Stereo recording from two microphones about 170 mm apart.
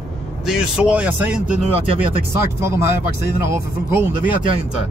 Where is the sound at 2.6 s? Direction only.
15° right (ahead or behind).